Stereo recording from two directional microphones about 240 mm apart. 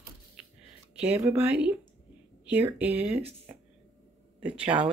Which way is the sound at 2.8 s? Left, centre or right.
Centre.